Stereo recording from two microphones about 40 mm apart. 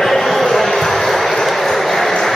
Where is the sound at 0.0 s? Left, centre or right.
Centre.